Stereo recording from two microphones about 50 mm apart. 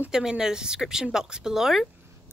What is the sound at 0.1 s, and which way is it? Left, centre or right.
Speech, centre.